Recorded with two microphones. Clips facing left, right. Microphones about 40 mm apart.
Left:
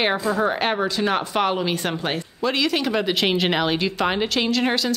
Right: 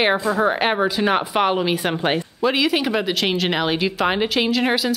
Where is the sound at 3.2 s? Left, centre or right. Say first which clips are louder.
Even; centre.